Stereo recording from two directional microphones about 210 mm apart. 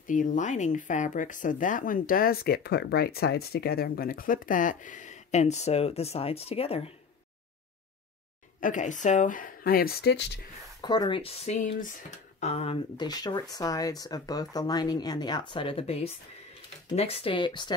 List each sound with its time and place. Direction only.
0.0 s speech: 40° left (ahead or behind)
8.5 s speech: 40° left (ahead or behind)
10.8 s speech: 20° left (ahead or behind)